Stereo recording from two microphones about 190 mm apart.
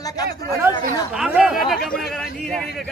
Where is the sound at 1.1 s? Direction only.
5° right (ahead or behind).